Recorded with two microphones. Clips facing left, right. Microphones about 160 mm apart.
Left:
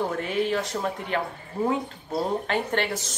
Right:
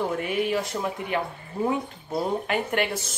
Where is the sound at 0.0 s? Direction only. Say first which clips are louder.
Even; 10° right (ahead or behind).